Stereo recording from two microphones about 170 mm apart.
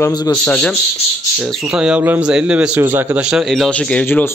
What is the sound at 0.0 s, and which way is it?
Speech, 20° left (ahead or behind).